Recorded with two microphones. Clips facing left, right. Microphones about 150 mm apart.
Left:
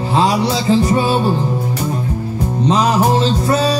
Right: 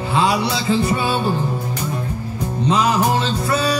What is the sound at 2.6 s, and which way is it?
Music, 35° left (ahead or behind).